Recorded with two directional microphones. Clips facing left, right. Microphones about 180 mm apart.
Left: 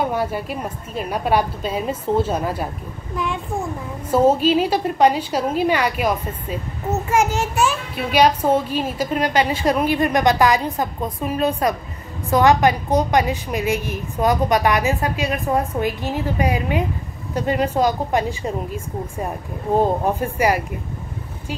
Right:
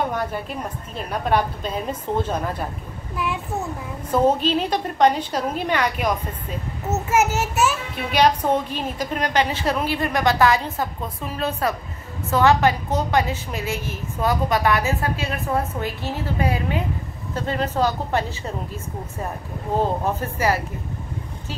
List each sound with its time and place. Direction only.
0.1 s a woman's voice: 10° left (ahead or behind)
4.1 s a woman's voice: 10° left (ahead or behind)
6.9 s a child's voice: 5° right (ahead or behind)
7.9 s a woman's voice: 5° left (ahead or behind)
19.8 s a woman's voice: 15° left (ahead or behind)